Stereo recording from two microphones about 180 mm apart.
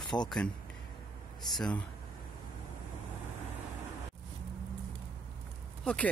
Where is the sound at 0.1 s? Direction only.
25° left (ahead or behind).